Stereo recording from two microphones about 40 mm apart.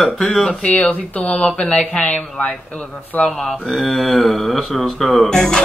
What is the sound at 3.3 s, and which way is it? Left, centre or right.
Music, centre.